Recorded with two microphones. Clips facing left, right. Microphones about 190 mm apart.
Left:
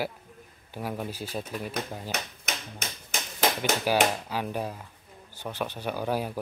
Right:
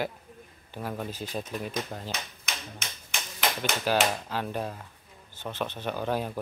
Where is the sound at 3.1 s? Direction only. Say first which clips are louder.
Left 4 dB; 45° left (ahead or behind).